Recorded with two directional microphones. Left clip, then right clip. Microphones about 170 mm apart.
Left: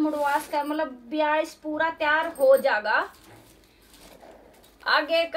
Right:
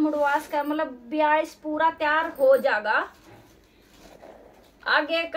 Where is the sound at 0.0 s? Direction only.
10° right (ahead or behind).